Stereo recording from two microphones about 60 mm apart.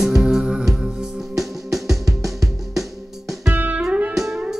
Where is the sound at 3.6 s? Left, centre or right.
Right.